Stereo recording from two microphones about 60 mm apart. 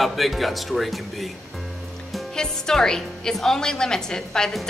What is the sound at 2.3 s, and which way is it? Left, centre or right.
A woman's voice, centre.